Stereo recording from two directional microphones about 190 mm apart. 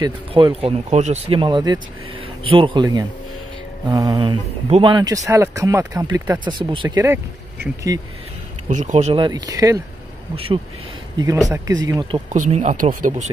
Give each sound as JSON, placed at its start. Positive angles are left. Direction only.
{"t": 0.0, "sound": "speech", "side_deg": -25}
{"t": 8.6, "sound": "speech", "side_deg": -40}
{"t": 10.3, "sound": "speech", "side_deg": -30}
{"t": 11.4, "sound": "speech", "side_deg": -15}
{"t": 12.3, "sound": "speech", "side_deg": -40}